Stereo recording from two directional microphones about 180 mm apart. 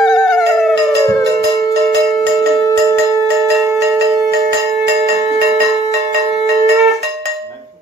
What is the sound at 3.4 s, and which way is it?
Music, 15° right (ahead or behind).